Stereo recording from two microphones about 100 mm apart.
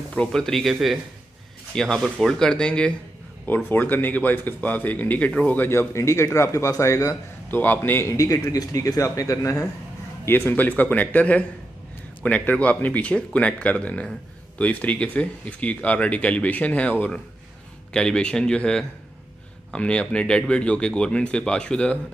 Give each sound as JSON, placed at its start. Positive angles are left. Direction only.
{"t": 0.1, "sound": "speech", "side_deg": 10}
{"t": 7.5, "sound": "speech", "side_deg": 20}
{"t": 8.1, "sound": "speech", "side_deg": 35}
{"t": 10.2, "sound": "speech", "side_deg": 20}